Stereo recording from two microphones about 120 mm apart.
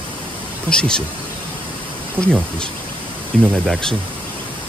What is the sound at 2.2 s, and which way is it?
Speech, 15° right (ahead or behind).